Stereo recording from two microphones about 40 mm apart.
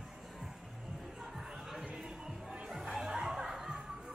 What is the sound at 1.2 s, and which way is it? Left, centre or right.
Chatter, centre.